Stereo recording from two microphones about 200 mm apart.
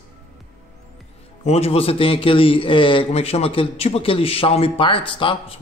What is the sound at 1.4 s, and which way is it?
A man's voice, 30° left (ahead or behind).